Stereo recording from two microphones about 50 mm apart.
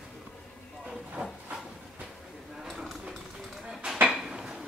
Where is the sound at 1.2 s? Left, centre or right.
Right.